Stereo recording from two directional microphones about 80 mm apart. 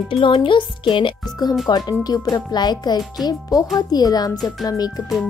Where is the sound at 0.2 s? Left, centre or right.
Left.